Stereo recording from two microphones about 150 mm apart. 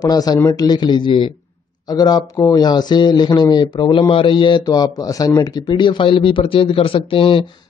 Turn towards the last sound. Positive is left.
turn(degrees=35)  # may be behind; listen again after turning